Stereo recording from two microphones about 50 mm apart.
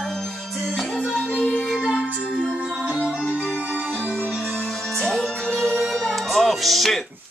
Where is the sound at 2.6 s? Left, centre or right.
Centre.